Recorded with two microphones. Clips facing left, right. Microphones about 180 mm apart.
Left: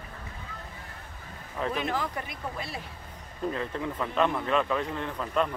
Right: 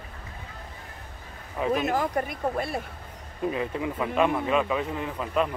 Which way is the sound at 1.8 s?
45° right (ahead or behind).